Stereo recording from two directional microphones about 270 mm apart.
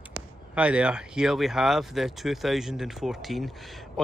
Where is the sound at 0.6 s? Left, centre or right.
Centre.